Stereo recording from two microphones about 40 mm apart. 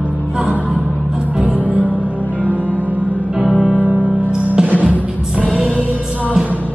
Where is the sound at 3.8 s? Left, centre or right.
Right.